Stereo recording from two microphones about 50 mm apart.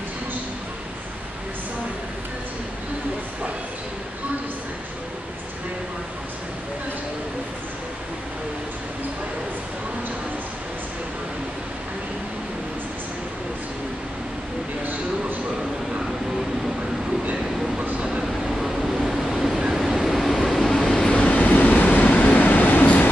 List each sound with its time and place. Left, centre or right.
17.3 s train: right
18.5 s vehicle: centre
20.9 s vehicle: centre; by 23.0 s left